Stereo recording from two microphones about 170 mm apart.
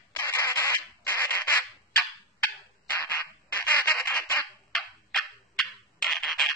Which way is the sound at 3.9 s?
Centre (ahead or behind).